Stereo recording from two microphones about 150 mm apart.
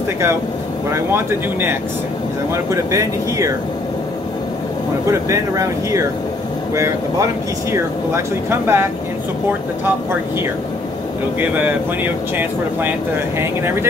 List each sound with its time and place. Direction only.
0.8 s speech: 15° right (ahead or behind)
5.0 s speech: 20° right (ahead or behind)
8.5 s speech: 15° right (ahead or behind)
11.3 s speech: 15° right (ahead or behind)